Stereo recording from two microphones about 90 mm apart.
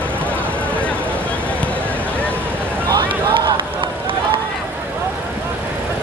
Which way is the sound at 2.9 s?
60° right (ahead or behind).